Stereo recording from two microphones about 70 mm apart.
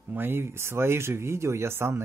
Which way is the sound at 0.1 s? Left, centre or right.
Right.